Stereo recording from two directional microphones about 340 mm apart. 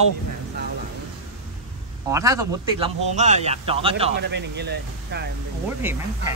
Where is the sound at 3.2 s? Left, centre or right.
Centre.